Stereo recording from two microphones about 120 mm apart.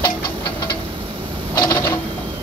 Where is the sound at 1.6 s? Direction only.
30° left (ahead or behind).